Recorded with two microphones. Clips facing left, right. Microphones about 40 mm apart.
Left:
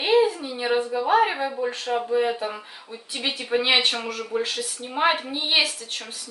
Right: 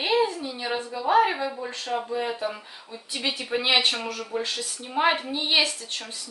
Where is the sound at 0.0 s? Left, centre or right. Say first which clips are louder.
Left 4 dB; centre.